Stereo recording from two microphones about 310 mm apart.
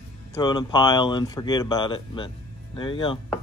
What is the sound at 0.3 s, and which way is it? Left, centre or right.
Speech, centre.